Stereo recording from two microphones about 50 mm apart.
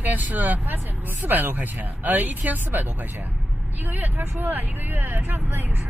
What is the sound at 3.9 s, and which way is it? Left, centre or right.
Speech, right.